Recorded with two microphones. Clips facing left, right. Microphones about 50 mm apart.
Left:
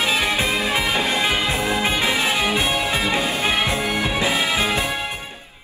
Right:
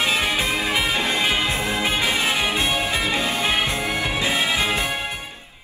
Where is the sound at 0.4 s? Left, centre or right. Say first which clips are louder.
Left 2 dB; left.